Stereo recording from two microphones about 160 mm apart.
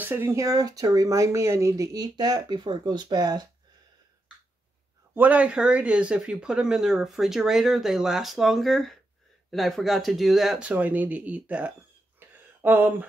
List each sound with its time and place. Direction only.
0.0 s speech: 15° right (ahead or behind)
5.1 s speech: 10° right (ahead or behind)
12.2 s a sound: 15° right (ahead or behind)